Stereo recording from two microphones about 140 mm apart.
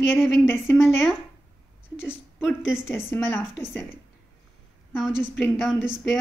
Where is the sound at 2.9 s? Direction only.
15° left (ahead or behind).